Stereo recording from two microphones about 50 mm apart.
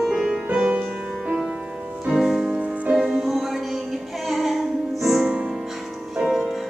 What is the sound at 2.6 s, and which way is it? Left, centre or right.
Music, right.